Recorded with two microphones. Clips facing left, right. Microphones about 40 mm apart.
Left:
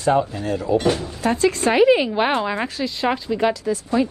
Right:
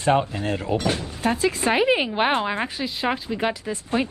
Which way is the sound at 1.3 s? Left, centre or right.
Centre.